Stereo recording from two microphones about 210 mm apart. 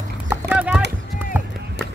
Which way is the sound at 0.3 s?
5° right (ahead or behind).